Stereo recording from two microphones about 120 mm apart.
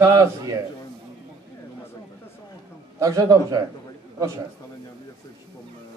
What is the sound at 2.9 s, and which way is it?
Speech, 30° right (ahead or behind).